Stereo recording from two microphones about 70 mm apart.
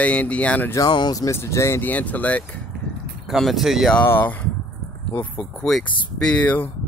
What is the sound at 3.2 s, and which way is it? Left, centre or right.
Speech, centre.